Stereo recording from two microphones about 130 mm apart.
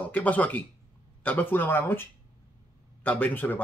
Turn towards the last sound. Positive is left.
turn(degrees=15)  # may be behind; listen again after turning